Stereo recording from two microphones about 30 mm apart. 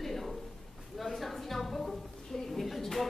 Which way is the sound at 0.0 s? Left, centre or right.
Centre.